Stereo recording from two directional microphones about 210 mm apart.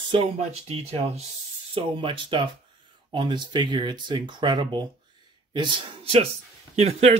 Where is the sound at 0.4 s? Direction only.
30° right (ahead or behind).